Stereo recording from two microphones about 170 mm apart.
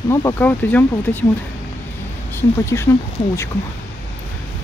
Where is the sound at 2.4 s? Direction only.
15° left (ahead or behind).